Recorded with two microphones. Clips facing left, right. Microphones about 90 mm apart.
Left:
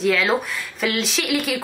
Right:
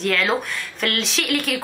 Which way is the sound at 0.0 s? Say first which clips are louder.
Left 2 dB; centre (ahead or behind).